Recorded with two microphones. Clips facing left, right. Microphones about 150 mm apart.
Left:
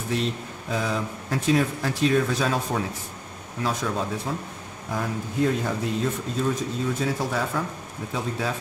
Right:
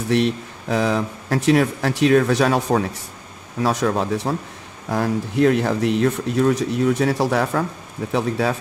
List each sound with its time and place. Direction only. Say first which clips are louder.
0.1 s speech: right 8 dB; 75° right (ahead or behind)